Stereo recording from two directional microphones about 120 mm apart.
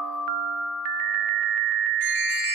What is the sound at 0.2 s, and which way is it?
Music, centre (ahead or behind).